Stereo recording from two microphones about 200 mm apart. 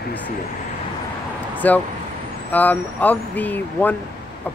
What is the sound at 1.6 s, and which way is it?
Speech, 10° left (ahead or behind).